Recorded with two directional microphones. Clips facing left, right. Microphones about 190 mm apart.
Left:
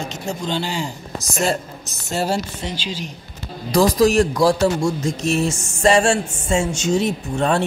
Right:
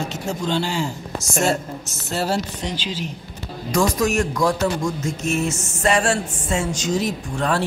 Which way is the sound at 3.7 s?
35° left (ahead or behind).